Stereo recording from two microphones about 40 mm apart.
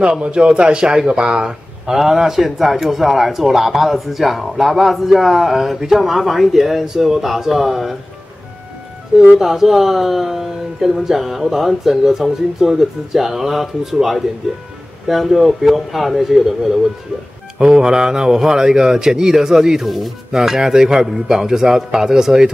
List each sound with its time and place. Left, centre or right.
0.2 s speech: right
1.9 s a man's voice: centre
9.4 s a man's voice: centre
17.6 s speech: centre